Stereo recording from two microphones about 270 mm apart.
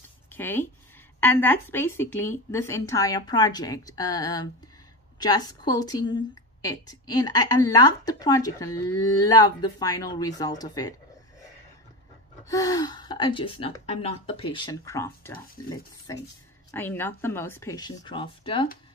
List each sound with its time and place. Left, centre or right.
0.3 s a woman's voice: centre
12.4 s a woman's voice: centre